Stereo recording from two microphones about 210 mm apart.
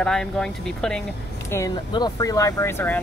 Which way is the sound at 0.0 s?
5° left (ahead or behind).